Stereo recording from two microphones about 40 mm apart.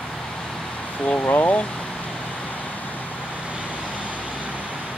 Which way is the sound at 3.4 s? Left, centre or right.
Right.